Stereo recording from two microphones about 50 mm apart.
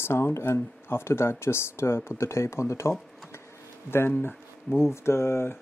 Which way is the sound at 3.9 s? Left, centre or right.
Left.